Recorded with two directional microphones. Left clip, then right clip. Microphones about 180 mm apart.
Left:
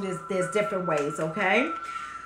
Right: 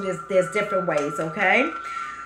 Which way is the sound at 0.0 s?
15° left (ahead or behind).